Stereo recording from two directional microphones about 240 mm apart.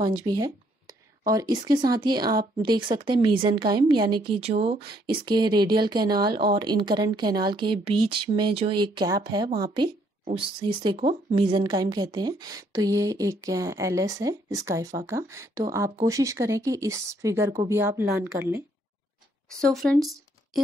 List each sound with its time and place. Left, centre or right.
0.0 s a sound: centre
1.6 s a woman's voice: centre
19.6 s speech: centre